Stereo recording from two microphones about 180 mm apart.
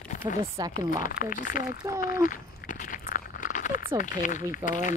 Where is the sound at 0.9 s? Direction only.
50° left (ahead or behind).